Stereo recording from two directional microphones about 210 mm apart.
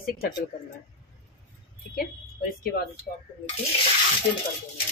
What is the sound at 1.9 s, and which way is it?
Speech, 45° left (ahead or behind).